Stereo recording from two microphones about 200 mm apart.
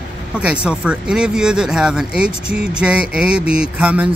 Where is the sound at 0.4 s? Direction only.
5° right (ahead or behind).